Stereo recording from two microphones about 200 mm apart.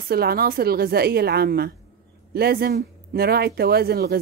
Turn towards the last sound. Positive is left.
turn(degrees=-50)  # may be behind; listen again after turning